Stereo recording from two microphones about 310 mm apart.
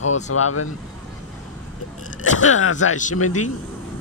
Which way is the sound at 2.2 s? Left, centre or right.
Left.